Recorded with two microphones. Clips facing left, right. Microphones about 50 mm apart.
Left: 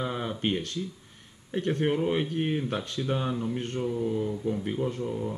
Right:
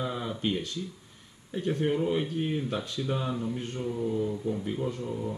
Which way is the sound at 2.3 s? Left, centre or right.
Left.